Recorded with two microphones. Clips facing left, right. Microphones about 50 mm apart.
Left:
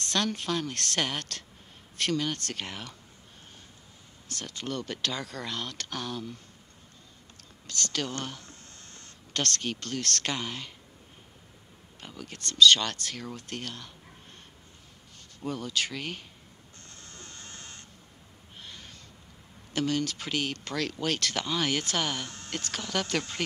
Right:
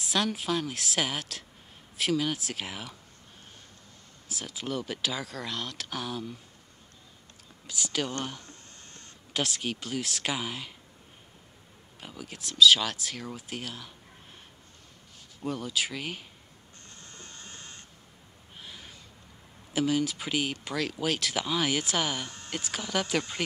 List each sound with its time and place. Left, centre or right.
0.0 s speech: centre
4.3 s speech: centre
7.6 s speech: centre
12.0 s speech: centre
15.4 s speech: centre
17.0 s a sound: right
18.6 s owl: centre
19.7 s speech: centre